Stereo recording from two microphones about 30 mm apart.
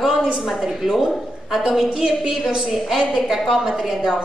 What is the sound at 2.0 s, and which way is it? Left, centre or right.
Speech, right.